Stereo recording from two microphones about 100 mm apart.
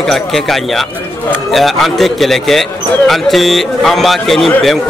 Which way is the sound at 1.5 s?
Centre (ahead or behind).